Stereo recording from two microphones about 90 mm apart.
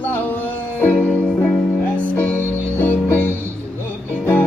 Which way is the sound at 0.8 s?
15° left (ahead or behind).